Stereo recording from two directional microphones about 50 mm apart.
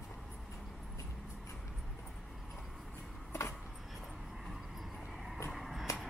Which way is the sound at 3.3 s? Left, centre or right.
Left.